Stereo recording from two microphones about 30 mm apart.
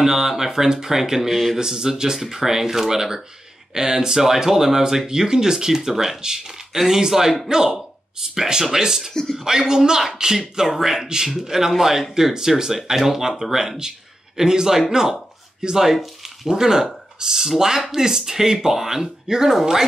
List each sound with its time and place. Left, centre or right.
0.0 s speech: centre
1.3 s speech: centre
1.6 s speech: centre
10.8 s speech: centre
11.1 s speech: right
12.4 s speech: right
19.2 s speech: right